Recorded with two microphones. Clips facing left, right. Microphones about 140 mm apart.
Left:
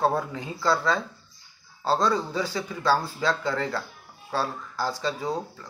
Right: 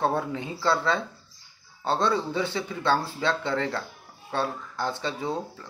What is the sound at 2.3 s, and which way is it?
Speech, 25° right (ahead or behind).